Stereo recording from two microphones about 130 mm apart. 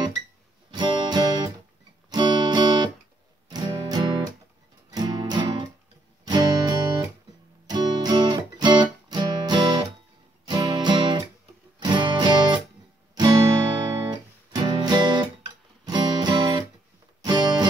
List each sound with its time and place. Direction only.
0.7 s music: 35° right (ahead or behind)